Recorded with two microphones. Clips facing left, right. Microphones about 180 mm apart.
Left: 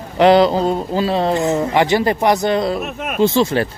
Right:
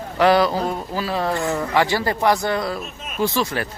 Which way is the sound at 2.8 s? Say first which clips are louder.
Left 10 dB; 65° left (ahead or behind).